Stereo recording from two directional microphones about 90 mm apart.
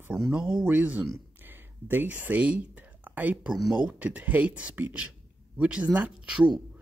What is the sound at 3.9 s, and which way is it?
Speech, 15° right (ahead or behind).